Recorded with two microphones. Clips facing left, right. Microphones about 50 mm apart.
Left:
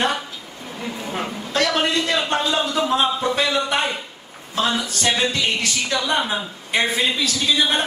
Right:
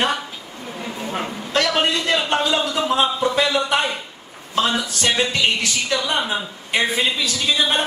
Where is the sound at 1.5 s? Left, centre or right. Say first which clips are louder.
Right 1 dB; right.